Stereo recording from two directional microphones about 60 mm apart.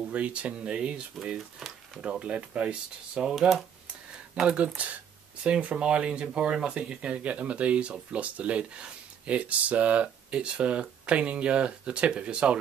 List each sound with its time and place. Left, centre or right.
0.1 s speech: right
4.4 s speech: right